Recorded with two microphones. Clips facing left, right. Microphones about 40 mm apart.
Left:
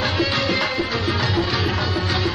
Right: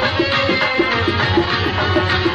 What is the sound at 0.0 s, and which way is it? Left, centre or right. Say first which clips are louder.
Music: right 4 dB; right.